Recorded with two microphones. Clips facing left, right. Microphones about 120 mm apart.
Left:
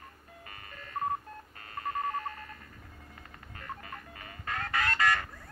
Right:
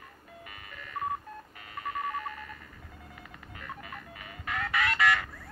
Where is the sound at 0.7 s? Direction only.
35° left (ahead or behind).